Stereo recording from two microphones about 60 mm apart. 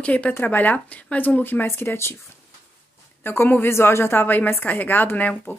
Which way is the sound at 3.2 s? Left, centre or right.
Left.